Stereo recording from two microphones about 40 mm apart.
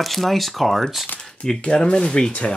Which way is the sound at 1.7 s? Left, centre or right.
Centre.